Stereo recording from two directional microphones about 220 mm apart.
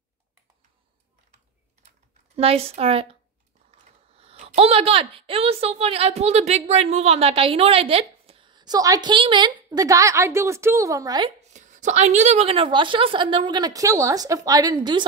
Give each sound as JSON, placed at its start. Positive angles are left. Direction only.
{"t": 2.3, "sound": "a woman's voice", "side_deg": -25}
{"t": 11.5, "sound": "a woman's voice", "side_deg": -35}